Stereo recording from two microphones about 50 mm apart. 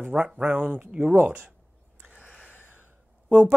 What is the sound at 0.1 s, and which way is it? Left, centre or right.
Speech, centre.